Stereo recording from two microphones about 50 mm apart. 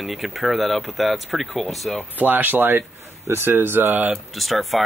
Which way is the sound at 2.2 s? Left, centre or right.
Right.